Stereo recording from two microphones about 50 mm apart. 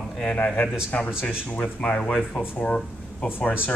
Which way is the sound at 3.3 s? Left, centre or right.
Left.